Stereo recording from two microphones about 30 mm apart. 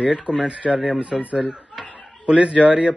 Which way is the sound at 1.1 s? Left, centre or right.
Centre.